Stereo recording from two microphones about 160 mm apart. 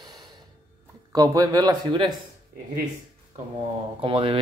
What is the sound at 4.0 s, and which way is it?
Speech, 30° right (ahead or behind).